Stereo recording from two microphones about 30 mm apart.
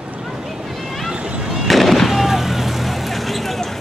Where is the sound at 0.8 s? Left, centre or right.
Centre.